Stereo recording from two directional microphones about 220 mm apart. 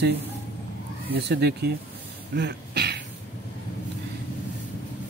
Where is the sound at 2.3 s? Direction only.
50° right (ahead or behind).